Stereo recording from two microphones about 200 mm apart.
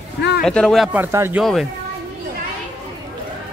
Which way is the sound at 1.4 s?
Centre (ahead or behind).